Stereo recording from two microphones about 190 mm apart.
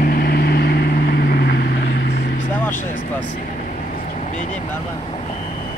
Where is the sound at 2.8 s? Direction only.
45° left (ahead or behind).